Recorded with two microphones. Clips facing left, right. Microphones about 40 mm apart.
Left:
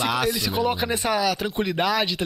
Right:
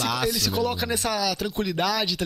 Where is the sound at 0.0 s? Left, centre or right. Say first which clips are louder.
Left 2 dB; centre.